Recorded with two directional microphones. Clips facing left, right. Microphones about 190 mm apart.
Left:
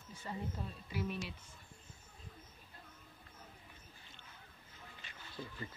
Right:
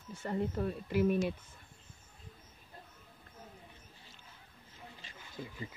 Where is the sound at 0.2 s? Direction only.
65° right (ahead or behind); by 1.3 s 50° right (ahead or behind).